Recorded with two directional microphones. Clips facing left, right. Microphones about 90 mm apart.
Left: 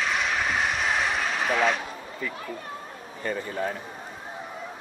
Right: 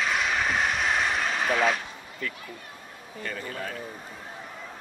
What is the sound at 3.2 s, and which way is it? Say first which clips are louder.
Speech: left 6 dB; 25° left (ahead or behind).